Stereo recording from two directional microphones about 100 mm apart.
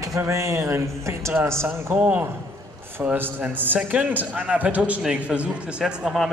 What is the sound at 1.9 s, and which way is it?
A man's voice, 15° right (ahead or behind).